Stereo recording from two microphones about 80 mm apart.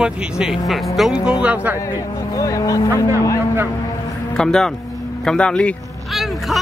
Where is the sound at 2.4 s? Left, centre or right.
Left.